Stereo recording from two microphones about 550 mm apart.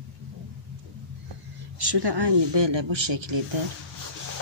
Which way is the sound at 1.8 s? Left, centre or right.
Right.